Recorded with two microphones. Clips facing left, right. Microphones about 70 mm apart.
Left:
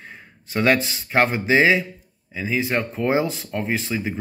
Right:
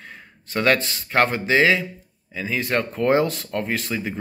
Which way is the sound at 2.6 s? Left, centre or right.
Centre.